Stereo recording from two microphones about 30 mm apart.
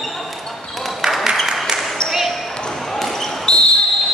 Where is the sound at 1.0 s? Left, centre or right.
Centre.